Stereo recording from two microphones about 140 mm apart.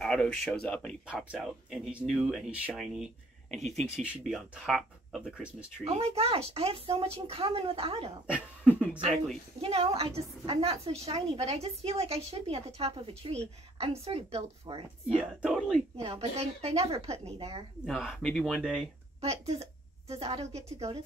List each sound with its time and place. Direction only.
0.0 s speech: 5° left (ahead or behind)
1.0 s speech: 5° right (ahead or behind)
5.9 s a woman's voice: 45° right (ahead or behind)
8.6 s a sound: 10° left (ahead or behind)
9.6 s a woman's voice: 45° right (ahead or behind)
15.4 s speech: 5° right (ahead or behind)
16.0 s a woman's voice: 50° right (ahead or behind)
17.8 s speech: centre (ahead or behind)
19.2 s a woman's voice: 45° right (ahead or behind)